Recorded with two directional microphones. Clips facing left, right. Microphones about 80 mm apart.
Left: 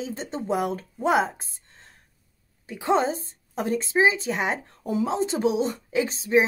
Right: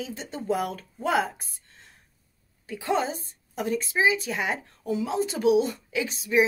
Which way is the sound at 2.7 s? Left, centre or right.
Left.